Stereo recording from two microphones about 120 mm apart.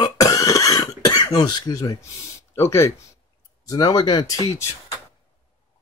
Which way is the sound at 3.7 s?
35° left (ahead or behind).